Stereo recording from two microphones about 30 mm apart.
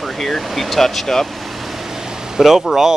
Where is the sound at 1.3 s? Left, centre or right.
Centre; by 2.4 s right.